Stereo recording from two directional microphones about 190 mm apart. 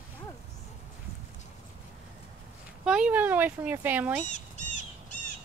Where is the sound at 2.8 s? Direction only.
5° right (ahead or behind).